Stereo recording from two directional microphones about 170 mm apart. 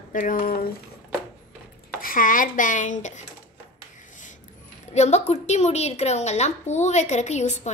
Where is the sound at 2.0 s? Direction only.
55° left (ahead or behind).